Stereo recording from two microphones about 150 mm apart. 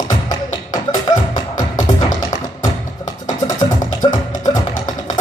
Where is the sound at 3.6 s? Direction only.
25° left (ahead or behind).